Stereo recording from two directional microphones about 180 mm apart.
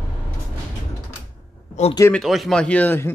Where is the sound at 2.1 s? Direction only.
Centre (ahead or behind).